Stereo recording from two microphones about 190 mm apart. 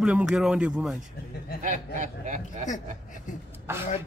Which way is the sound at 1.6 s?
40° right (ahead or behind).